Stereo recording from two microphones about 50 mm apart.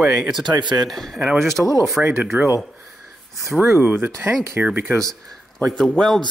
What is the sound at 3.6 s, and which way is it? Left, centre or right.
Speech, right.